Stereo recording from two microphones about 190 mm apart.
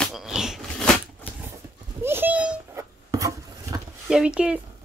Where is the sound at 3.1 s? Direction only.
20° right (ahead or behind).